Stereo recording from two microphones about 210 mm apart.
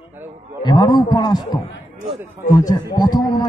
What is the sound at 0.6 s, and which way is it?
Speech, 20° left (ahead or behind).